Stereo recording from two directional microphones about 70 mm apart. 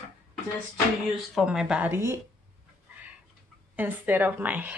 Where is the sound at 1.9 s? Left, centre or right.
Right.